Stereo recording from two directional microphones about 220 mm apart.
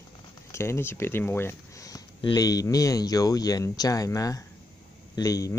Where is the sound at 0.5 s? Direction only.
10° left (ahead or behind).